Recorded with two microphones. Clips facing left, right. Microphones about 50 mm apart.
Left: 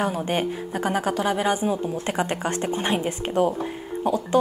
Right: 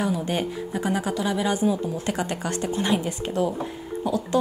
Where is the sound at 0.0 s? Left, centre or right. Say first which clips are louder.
Left 1 dB; left.